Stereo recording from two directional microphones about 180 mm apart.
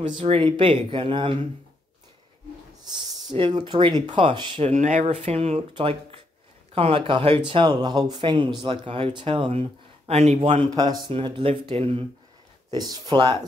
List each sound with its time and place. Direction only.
0.2 s speech: 30° right (ahead or behind)
3.3 s speech: 25° right (ahead or behind)
10.7 s speech: 20° right (ahead or behind)
12.7 s speech: 20° right (ahead or behind)